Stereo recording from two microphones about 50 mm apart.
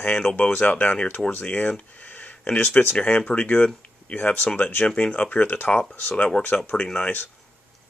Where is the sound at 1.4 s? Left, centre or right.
Left.